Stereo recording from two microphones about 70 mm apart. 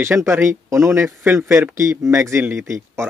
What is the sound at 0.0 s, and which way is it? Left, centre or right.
Speech, right.